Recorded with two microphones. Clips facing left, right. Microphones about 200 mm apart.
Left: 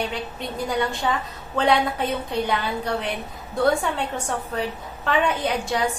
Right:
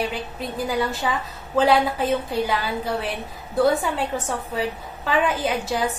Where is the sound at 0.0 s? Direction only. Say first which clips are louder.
Right 1 dB; 5° right (ahead or behind).